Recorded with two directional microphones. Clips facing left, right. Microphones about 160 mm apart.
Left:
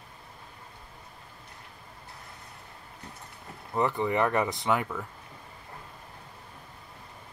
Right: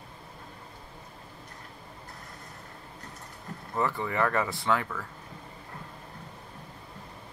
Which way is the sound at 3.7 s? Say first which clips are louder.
Left 3 dB; 20° left (ahead or behind).